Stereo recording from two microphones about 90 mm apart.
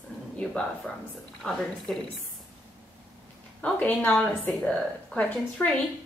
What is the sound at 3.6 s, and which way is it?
Speech, 15° left (ahead or behind).